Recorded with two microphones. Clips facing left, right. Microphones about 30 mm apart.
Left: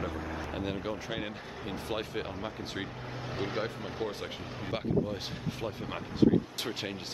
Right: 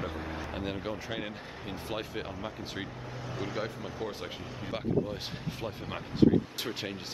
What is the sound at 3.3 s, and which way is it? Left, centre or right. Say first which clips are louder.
Speech: left 2 dB; left.